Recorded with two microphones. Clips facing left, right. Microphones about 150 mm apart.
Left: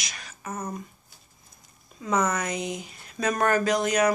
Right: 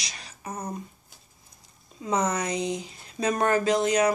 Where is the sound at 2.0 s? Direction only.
25° right (ahead or behind).